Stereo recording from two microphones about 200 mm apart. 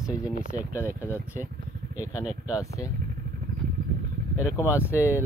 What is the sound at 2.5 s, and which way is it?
Speech, 15° left (ahead or behind).